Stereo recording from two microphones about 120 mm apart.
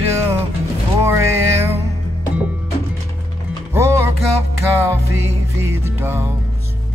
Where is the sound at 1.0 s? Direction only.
20° right (ahead or behind).